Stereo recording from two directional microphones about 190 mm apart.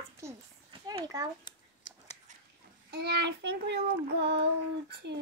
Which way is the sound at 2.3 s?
40° right (ahead or behind).